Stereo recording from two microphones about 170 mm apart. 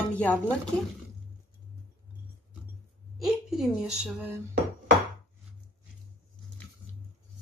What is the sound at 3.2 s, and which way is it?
Speech, 5° right (ahead or behind).